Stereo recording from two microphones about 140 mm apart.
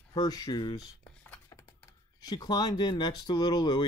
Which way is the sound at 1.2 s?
10° left (ahead or behind).